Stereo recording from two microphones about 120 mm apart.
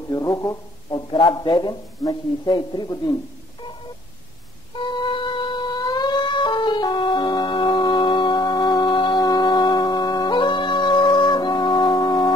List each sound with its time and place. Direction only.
0.1 s speech: 30° left (ahead or behind)
4.7 s music: 45° left (ahead or behind)